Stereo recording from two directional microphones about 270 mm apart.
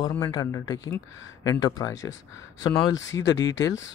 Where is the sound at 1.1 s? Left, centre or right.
Left.